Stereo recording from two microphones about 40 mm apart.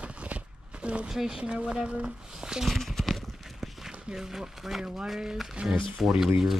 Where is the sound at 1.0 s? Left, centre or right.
Centre.